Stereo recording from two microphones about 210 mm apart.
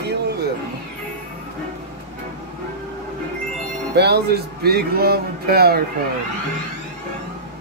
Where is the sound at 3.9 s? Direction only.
50° right (ahead or behind).